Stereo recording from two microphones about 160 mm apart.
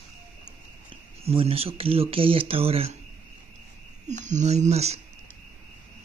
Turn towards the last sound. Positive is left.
turn(degrees=-40)  # may be behind; listen again after turning